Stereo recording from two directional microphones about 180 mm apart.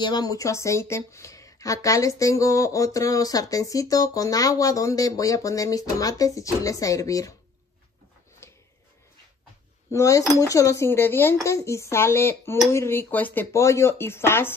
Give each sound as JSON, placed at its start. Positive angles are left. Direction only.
{"t": 0.0, "sound": "speech", "side_deg": 20}
{"t": 8.4, "sound": "a sound", "side_deg": 15}
{"t": 9.8, "sound": "speech", "side_deg": 15}